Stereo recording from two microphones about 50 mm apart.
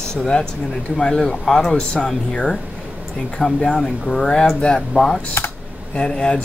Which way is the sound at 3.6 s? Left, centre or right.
Centre.